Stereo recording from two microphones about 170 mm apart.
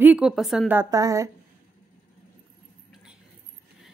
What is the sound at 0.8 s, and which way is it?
Speech, 20° right (ahead or behind).